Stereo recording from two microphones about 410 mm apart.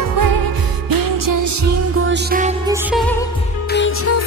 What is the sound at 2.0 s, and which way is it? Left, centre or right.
Music, centre.